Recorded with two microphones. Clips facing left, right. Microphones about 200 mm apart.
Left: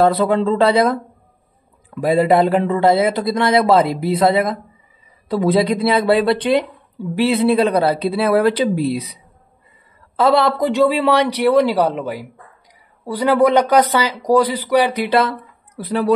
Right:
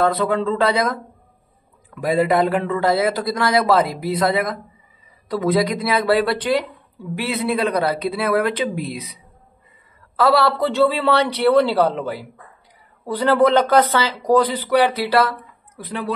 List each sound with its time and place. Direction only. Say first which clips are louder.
0.0 s speech: left 4 dB; 30° left (ahead or behind)
2.1 s speech: left 3 dB; 30° left (ahead or behind)
10.1 s speech: left 2 dB; 20° left (ahead or behind)
15.7 s speech: left 8 dB; 40° left (ahead or behind)